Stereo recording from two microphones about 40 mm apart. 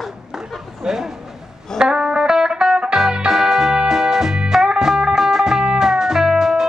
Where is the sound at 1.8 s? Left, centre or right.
Centre.